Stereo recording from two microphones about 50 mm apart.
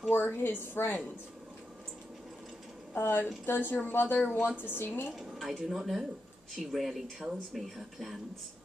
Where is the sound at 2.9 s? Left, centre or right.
Left.